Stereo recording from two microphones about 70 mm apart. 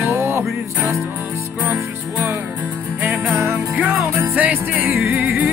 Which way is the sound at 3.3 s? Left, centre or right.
Right.